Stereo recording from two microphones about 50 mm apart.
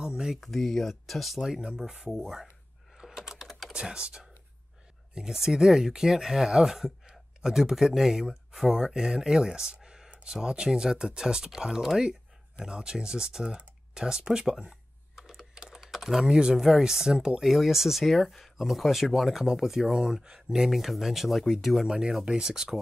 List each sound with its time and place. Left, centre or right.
0.0 s a sound: centre
0.4 s speech: centre
1.5 s speech: centre
3.0 s typing: centre
3.7 s speech: centre
17.5 s speech: centre
22.2 s speech: centre